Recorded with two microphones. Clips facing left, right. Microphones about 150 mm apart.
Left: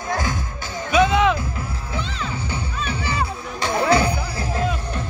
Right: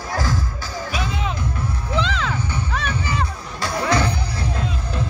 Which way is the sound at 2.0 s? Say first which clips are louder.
Right 6 dB; 90° right.